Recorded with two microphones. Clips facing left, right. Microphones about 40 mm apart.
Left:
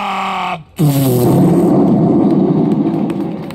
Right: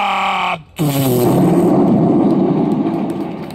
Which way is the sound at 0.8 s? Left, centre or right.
Right.